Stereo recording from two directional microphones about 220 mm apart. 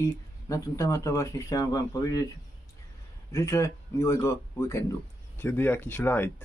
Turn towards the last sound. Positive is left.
turn(degrees=10)  # may be behind; listen again after turning